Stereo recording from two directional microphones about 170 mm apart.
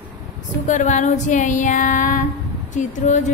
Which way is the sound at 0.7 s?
45° left (ahead or behind).